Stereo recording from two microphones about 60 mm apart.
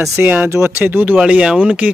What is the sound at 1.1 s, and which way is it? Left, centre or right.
Speech, centre.